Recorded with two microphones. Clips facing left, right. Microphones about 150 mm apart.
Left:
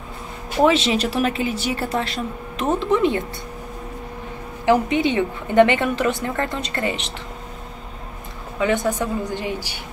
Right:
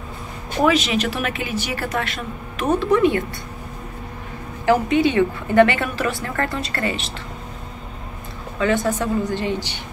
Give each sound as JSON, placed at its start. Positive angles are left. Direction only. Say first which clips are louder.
{"t": 0.7, "sound": "a woman's voice", "louder": "even", "side_deg": 30}
{"t": 4.6, "sound": "a woman's voice", "louder": "right 1 dB", "side_deg": 20}
{"t": 8.5, "sound": "a woman's voice", "louder": "even", "side_deg": 15}